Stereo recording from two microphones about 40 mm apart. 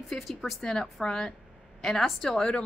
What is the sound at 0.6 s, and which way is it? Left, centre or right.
Speech, centre.